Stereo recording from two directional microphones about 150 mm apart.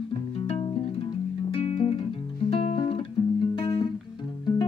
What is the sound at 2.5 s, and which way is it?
Music, 40° left (ahead or behind).